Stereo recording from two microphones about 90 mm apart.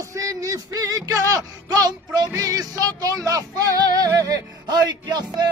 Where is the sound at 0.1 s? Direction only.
40° right (ahead or behind).